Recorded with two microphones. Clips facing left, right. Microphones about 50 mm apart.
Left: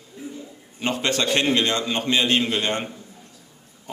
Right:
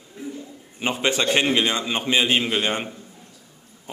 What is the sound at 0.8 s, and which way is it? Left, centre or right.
A man's voice, centre.